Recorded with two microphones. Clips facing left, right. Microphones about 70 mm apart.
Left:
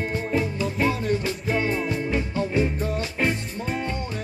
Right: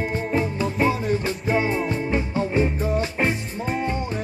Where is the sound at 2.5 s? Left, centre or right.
Right.